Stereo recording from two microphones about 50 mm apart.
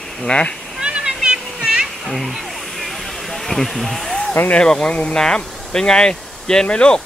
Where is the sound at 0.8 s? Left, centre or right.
Centre.